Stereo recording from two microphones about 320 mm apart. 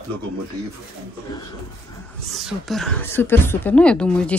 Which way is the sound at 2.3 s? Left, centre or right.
Centre.